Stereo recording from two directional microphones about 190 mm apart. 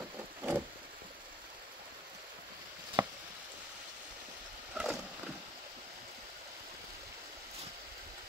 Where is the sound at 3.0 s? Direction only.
20° right (ahead or behind).